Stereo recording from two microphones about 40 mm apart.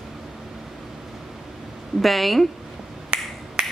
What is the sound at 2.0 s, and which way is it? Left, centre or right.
Speech, centre.